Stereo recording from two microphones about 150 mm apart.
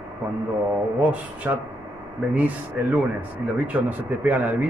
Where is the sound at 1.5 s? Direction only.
10° right (ahead or behind).